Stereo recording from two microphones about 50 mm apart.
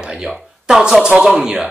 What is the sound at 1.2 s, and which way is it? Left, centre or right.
Speech, centre.